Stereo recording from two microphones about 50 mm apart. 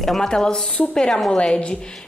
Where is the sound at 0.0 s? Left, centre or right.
Centre.